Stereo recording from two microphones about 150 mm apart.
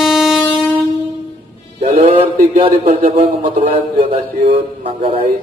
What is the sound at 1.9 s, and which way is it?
Music, 70° right (ahead or behind).